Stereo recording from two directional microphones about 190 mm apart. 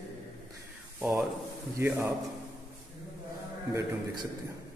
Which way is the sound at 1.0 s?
5° right (ahead or behind).